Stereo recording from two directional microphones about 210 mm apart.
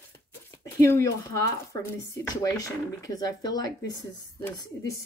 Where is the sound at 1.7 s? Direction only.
15° left (ahead or behind).